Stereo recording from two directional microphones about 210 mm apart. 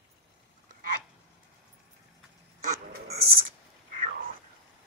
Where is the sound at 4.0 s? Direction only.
45° right (ahead or behind).